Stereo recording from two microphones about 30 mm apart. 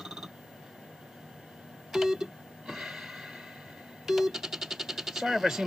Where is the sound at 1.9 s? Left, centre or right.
Centre.